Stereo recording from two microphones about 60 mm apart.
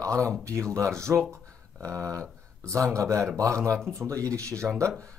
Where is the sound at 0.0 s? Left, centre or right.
Right.